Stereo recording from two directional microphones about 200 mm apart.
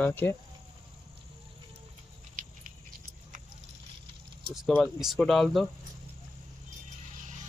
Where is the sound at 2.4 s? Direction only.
40° right (ahead or behind).